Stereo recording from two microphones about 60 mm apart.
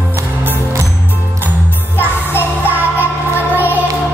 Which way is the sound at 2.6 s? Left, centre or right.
Right.